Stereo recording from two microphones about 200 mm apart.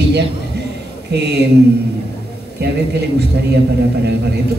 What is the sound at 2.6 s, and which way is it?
Speech, 55° right (ahead or behind).